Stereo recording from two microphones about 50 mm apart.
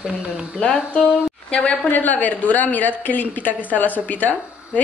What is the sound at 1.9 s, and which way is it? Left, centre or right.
A woman's voice, left.